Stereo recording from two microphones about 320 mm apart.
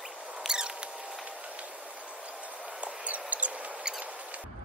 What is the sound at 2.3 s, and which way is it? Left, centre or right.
Mouse, centre.